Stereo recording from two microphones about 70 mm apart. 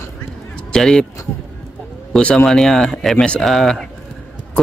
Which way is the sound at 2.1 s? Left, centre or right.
Centre.